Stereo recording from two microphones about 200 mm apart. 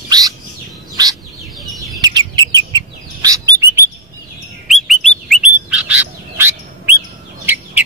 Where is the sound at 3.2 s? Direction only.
15° right (ahead or behind).